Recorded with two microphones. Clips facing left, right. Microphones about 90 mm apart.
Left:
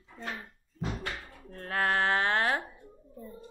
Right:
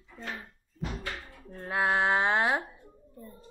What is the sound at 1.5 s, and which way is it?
Speech, 10° right (ahead or behind).